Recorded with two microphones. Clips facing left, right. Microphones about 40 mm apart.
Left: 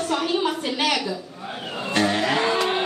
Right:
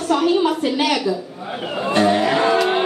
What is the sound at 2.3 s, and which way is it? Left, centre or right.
Music, centre.